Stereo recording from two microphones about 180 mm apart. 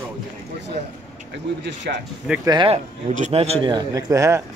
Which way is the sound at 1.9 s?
55° right (ahead or behind).